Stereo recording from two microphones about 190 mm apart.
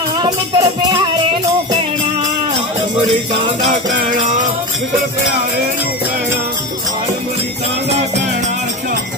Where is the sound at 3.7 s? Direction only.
45° right (ahead or behind).